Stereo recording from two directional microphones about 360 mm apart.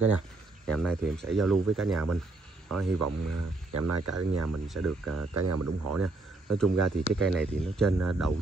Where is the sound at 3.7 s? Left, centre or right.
Right.